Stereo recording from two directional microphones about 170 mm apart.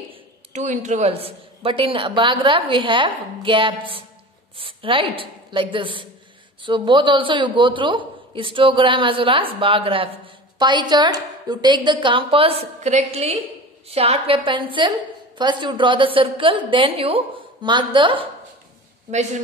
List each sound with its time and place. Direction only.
0.1 s a woman's voice: 40° right (ahead or behind)